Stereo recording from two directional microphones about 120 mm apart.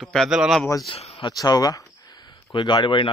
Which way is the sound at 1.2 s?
35° left (ahead or behind).